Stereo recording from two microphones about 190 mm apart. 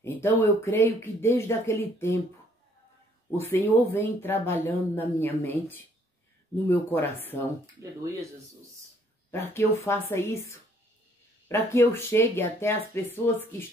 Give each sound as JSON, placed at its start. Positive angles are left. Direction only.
{"t": 0.0, "sound": "speech", "side_deg": 10}
{"t": 3.3, "sound": "speech", "side_deg": 10}
{"t": 7.8, "sound": "speech", "side_deg": -15}
{"t": 9.3, "sound": "speech", "side_deg": 15}